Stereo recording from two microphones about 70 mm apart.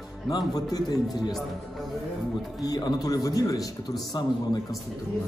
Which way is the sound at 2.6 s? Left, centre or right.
Left.